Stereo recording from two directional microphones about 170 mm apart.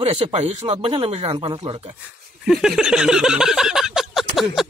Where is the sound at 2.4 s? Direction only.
Centre (ahead or behind).